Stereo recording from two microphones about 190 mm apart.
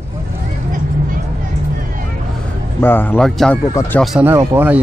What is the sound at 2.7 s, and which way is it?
Speech, 10° left (ahead or behind).